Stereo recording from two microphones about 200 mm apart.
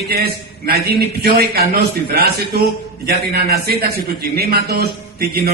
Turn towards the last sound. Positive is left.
turn(degrees=-50)  # may be behind; listen again after turning